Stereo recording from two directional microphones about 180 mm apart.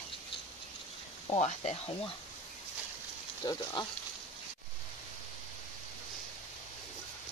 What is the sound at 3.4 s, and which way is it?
Speech, 25° left (ahead or behind).